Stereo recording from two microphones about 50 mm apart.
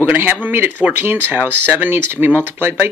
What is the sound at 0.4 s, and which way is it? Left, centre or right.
Speech, right.